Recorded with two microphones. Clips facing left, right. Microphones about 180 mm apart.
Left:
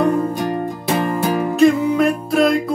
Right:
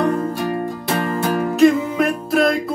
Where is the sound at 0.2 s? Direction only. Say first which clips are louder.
Left 1 dB; 20° left (ahead or behind).